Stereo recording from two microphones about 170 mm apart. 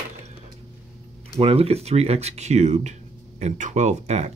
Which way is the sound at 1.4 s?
35° right (ahead or behind).